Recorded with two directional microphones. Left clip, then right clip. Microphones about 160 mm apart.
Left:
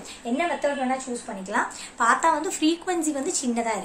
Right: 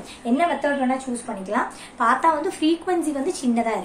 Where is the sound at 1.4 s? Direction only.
20° left (ahead or behind).